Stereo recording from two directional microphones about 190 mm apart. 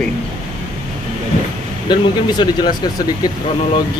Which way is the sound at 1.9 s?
25° left (ahead or behind).